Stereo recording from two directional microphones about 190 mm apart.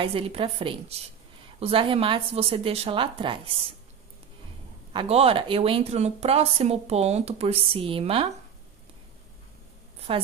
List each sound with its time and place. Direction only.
0.0 s a woman's voice: 30° right (ahead or behind)
4.9 s speech: 30° right (ahead or behind)
9.9 s a sound: 30° right (ahead or behind)